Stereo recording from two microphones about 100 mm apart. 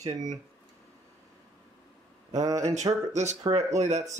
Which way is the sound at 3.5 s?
55° right (ahead or behind).